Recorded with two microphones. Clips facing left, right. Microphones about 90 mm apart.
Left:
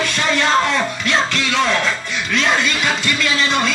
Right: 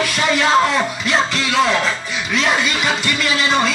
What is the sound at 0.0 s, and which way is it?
Music, 5° right (ahead or behind).